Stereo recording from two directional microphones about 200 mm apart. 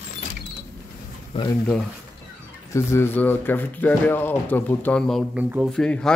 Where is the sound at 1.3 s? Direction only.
25° left (ahead or behind).